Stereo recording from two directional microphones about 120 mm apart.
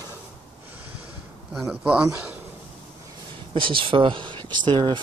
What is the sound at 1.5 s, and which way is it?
Speech, 5° right (ahead or behind).